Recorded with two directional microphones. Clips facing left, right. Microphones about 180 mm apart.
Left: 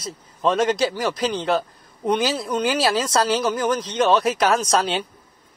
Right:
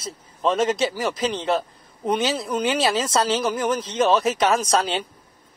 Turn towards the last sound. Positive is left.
turn(degrees=0)  # may be behind; listen again after turning